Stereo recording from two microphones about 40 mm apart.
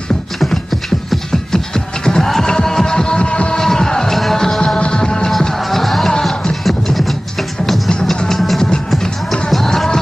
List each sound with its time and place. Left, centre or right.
0.5 s music: centre; by 3.5 s left
3.5 s music: centre
4.6 s music: left
5.6 s music: centre